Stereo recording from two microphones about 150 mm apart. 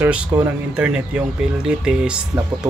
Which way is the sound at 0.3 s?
20° right (ahead or behind).